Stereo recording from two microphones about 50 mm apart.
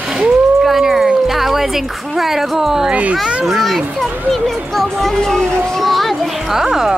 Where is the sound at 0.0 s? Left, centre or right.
Centre.